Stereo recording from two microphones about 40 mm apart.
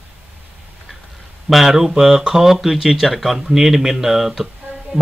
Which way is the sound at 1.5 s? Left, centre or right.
Centre.